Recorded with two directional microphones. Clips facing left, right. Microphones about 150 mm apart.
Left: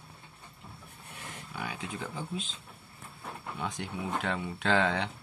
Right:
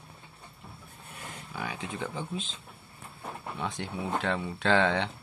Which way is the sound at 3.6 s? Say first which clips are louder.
Right 2 dB; 5° left (ahead or behind).